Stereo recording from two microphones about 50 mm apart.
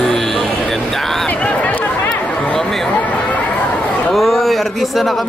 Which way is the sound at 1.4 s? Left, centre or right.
Left.